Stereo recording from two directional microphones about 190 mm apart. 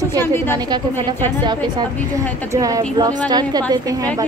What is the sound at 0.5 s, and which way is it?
A woman's voice, 20° right (ahead or behind).